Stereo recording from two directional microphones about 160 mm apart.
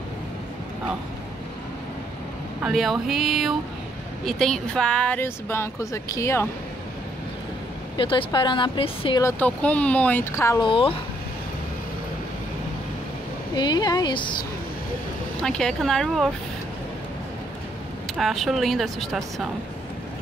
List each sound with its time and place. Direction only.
2.6 s speech: centre (ahead or behind); by 6.4 s 20° left (ahead or behind)
8.0 s speech: 30° left (ahead or behind)
9.2 s speech: 10° left (ahead or behind)
10.6 s speech: 35° left (ahead or behind)
13.6 s speech: 25° left (ahead or behind)
15.4 s speech: 5° left (ahead or behind)
18.1 s speech: centre (ahead or behind)